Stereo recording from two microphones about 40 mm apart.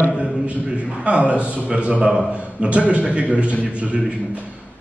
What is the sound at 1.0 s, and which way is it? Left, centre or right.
A man's voice, right.